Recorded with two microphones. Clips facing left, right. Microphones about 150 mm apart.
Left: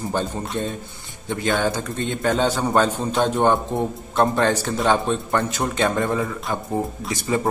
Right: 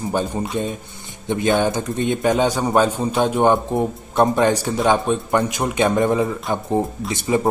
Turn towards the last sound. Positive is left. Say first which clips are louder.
# right 3 dB
turn(degrees=-20)  # may be behind; listen again after turning